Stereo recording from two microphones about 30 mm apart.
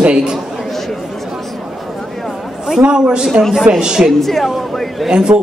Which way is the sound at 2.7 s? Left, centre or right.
Right.